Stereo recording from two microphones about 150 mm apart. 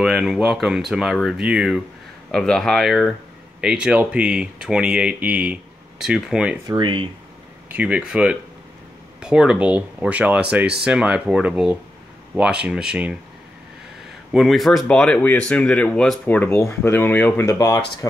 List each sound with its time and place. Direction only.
0.0 s speech: centre (ahead or behind)
6.7 s speech: 35° right (ahead or behind)
7.7 s speech: 10° right (ahead or behind)
14.3 s speech: centre (ahead or behind); by 17.8 s 20° left (ahead or behind)